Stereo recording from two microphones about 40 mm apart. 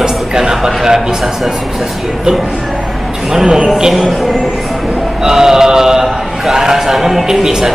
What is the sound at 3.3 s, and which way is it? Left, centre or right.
Speech, centre.